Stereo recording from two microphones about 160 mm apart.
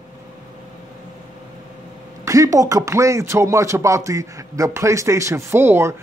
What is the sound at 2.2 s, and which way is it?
Speech, 20° right (ahead or behind).